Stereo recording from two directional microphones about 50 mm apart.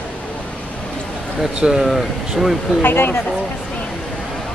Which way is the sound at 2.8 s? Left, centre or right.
Left.